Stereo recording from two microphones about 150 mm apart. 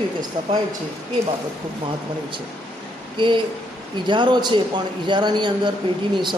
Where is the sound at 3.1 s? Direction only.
35° right (ahead or behind).